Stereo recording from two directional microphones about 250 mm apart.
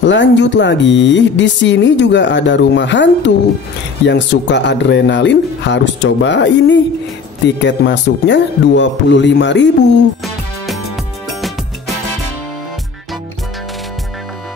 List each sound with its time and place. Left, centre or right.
0.0 s speech: left